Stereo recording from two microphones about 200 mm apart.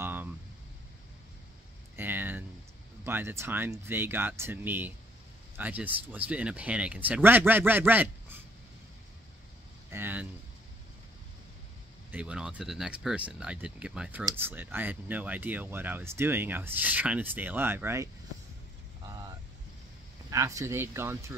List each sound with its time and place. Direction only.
0.0 s a sound: 10° right (ahead or behind)
2.0 s a sound: 10° right (ahead or behind)
3.0 s speech: 10° right (ahead or behind)
9.8 s speech: 10° right (ahead or behind)
12.1 s speech: 5° right (ahead or behind)
19.0 s vehicle: 20° right (ahead or behind)
20.2 s speech: 15° right (ahead or behind)